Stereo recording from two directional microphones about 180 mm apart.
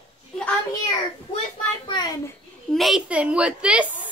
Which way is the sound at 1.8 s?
25° left (ahead or behind).